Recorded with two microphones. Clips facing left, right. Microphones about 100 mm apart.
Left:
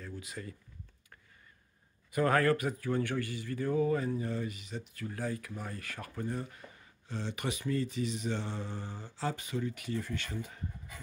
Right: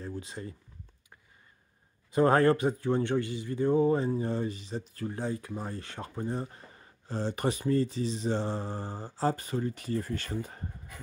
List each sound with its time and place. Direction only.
0.0 s speech: 30° right (ahead or behind)
2.0 s speech: 25° right (ahead or behind)